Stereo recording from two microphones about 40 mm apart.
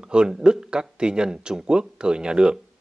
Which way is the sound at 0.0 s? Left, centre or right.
Right.